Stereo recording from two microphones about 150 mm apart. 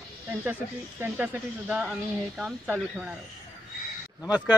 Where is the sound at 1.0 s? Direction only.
10° right (ahead or behind).